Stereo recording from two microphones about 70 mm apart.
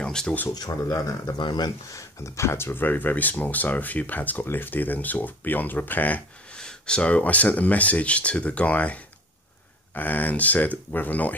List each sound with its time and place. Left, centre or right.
0.0 s a sound: centre
0.7 s speech: left
1.4 s speech: left
1.9 s speech: left
6.5 s speech: centre